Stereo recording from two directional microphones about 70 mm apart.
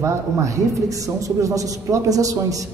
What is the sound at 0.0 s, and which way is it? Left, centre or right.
A man's voice, right.